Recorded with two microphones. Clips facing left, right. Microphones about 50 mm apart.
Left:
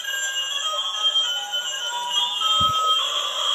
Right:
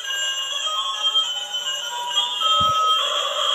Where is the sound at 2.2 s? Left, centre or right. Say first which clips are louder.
Right 3 dB; centre.